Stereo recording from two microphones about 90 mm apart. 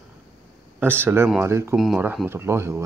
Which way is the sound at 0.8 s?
25° right (ahead or behind).